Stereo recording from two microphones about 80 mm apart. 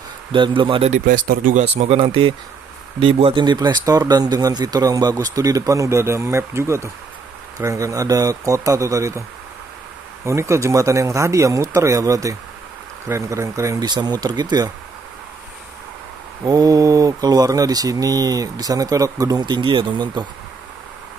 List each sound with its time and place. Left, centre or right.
0.3 s speech: right
2.0 s speech: right
3.8 s speech: right
10.2 s speech: right
13.8 s speech: right
16.4 s speech: right